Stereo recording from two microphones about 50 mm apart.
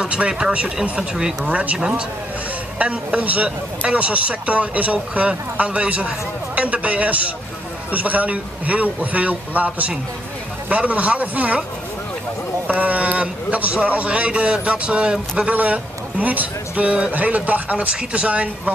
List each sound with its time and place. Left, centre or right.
0.0 s speech: centre
2.8 s speech: right
12.6 s speech: right
15.5 s speech: right